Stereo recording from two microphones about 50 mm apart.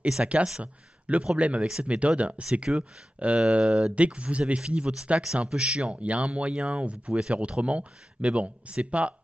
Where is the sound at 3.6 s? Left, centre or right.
Centre.